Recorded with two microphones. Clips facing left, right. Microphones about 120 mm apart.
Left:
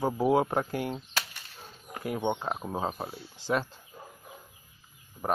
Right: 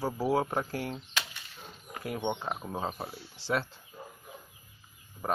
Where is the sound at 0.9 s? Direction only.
40° left (ahead or behind).